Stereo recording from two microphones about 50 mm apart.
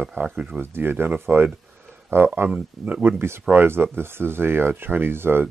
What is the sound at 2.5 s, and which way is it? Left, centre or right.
Speech, right.